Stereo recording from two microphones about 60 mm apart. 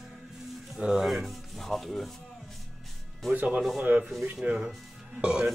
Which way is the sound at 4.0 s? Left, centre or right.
Centre.